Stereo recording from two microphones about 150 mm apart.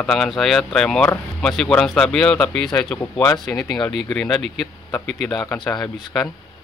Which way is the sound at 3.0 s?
15° left (ahead or behind).